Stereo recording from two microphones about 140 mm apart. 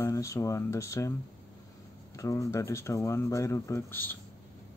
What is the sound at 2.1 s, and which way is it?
Speech, 20° left (ahead or behind).